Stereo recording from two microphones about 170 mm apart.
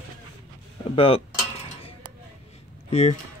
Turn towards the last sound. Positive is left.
turn(degrees=35)  # may be behind; listen again after turning